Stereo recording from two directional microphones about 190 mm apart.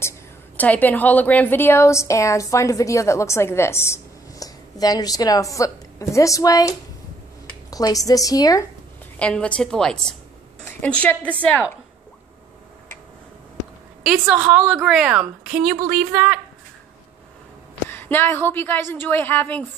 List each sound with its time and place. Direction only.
0.6 s a woman's voice: 10° left (ahead or behind)
7.7 s a woman's voice: 20° left (ahead or behind)
9.2 s a woman's voice: 5° left (ahead or behind)
14.0 s a woman's voice: 5° right (ahead or behind)
17.8 s a woman's voice: 10° left (ahead or behind)